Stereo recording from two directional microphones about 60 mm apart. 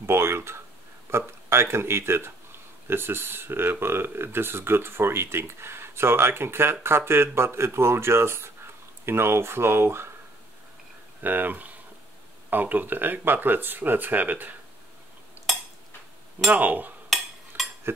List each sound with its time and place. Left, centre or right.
0.0 s a sound: right
1.1 s speech: right
11.2 s speech: right
15.4 s cutlery: right
16.4 s speech: right
17.1 s a sound: centre
17.5 s stir: right